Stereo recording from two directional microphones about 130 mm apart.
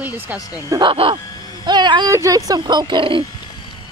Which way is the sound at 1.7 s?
35° right (ahead or behind).